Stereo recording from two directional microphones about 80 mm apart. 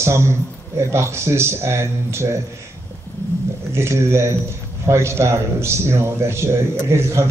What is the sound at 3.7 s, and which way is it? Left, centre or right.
A man's voice, right.